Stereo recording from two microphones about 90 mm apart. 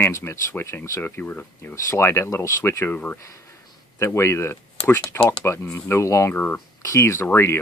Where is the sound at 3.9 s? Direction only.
30° left (ahead or behind).